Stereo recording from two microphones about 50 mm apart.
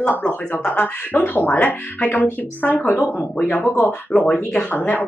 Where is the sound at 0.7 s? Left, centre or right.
Left.